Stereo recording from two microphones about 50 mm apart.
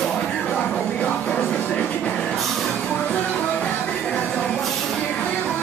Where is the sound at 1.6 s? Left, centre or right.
Left.